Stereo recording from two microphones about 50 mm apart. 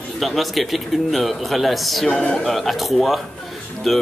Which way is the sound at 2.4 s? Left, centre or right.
Centre.